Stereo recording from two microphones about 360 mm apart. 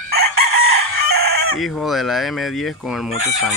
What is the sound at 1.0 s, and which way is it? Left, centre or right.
Chicken, right.